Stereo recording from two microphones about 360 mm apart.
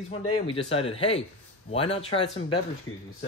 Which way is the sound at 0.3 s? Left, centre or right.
Centre.